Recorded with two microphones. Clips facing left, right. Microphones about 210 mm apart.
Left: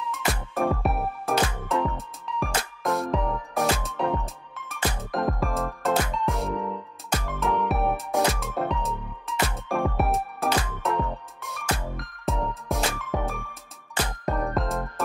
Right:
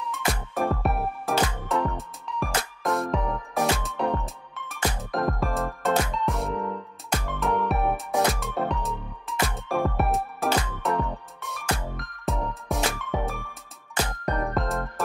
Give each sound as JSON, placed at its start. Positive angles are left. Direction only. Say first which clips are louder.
{"t": 0.1, "sound": "music", "louder": "even", "side_deg": 0}